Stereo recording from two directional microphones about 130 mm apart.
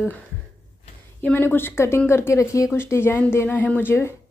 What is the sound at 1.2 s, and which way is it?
A woman's voice, 15° left (ahead or behind).